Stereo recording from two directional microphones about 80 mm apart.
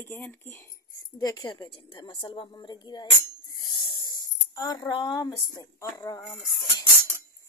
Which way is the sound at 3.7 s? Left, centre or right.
Left.